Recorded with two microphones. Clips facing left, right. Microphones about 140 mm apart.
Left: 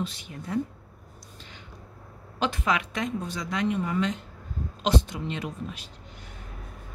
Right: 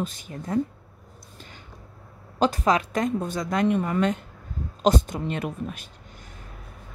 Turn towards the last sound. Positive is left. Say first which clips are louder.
# right 4 dB
turn(degrees=-50)  # may be behind; listen again after turning